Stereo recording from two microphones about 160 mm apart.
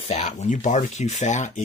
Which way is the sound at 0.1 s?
45° left (ahead or behind).